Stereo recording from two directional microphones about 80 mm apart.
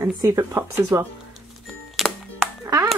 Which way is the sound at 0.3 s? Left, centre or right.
Right.